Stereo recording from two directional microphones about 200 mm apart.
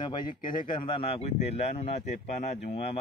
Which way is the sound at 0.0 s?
25° left (ahead or behind).